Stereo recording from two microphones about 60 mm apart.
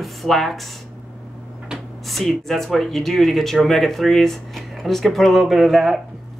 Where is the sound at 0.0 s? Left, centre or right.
Centre.